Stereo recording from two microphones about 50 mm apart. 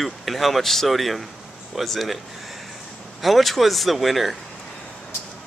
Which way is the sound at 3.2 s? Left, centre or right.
Centre.